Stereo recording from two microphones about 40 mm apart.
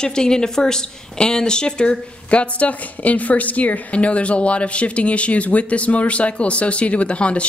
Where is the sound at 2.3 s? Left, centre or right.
Left.